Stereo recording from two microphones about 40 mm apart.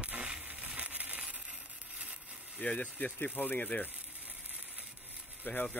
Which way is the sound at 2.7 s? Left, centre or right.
Left.